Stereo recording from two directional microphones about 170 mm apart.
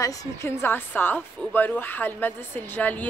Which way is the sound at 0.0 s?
15° left (ahead or behind).